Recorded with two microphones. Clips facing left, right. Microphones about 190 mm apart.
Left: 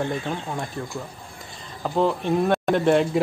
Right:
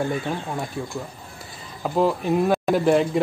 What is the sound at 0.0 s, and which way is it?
Speech, 5° right (ahead or behind).